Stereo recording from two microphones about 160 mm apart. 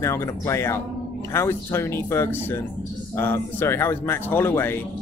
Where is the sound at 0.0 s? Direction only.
20° left (ahead or behind).